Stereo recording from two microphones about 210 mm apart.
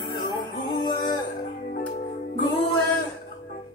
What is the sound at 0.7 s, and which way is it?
Music, 20° left (ahead or behind).